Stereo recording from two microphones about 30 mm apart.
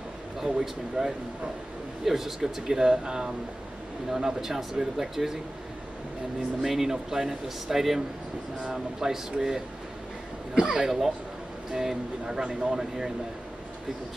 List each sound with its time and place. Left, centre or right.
0.4 s speech: centre
6.6 s speech: centre
10.5 s a sound: right
11.8 s speech: centre